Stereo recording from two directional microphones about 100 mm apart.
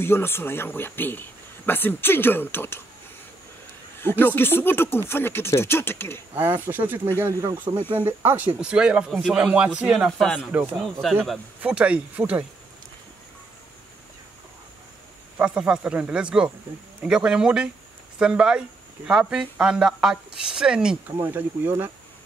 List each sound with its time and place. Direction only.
0.0 s speech: 25° left (ahead or behind)
4.0 s a woman's voice: 20° left (ahead or behind)
6.7 s speech: 20° right (ahead or behind)
7.2 s speech: 30° right (ahead or behind)
7.9 s speech: 55° right (ahead or behind)
8.2 s speech: 20° right (ahead or behind)
8.5 s speech: 10° right (ahead or behind)
10.1 s speech: 5° left (ahead or behind)
11.6 s speech: 15° right (ahead or behind)
15.3 s speech: 15° right (ahead or behind)
21.2 s speech: 20° right (ahead or behind)